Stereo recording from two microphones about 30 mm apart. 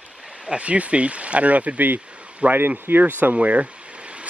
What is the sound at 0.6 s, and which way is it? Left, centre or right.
Speech, right.